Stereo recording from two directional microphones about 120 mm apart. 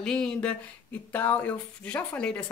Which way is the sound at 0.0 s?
5° left (ahead or behind).